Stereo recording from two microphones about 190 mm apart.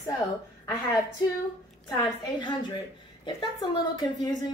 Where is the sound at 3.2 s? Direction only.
20° left (ahead or behind).